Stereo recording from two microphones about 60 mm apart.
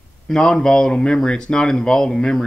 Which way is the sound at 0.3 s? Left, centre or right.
Centre.